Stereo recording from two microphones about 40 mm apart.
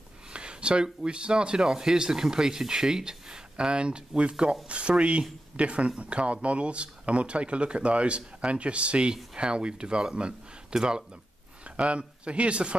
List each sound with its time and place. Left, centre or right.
0.3 s speech: right
11.6 s a sound: right
12.0 s speech: right